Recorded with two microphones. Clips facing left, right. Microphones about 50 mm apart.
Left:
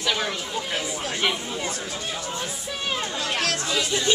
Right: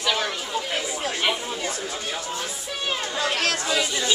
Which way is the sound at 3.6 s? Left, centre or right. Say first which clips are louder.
Right 1 dB; centre.